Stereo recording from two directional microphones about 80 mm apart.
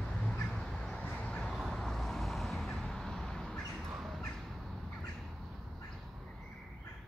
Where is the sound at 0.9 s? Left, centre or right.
Centre.